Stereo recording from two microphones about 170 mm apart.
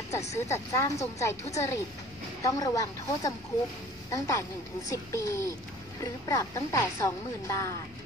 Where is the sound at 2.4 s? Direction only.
20° left (ahead or behind).